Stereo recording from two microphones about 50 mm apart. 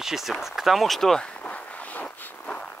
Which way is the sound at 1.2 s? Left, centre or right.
Left.